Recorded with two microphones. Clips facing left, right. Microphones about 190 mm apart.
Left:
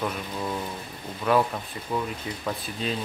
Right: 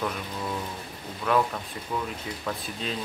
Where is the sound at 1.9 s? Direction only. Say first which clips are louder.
Left 3 dB; 5° left (ahead or behind).